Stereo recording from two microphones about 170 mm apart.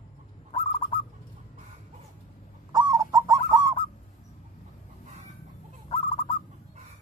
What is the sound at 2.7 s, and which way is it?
Owl, 25° right (ahead or behind).